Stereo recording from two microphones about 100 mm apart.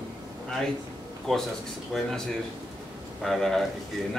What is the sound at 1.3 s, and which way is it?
Speech, 5° left (ahead or behind).